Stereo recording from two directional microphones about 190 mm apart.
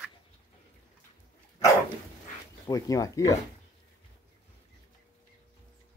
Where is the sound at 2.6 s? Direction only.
20° left (ahead or behind).